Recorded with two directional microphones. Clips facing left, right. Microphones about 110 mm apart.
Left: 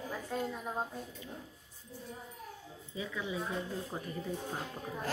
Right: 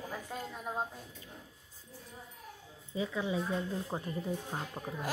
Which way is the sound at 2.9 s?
30° right (ahead or behind).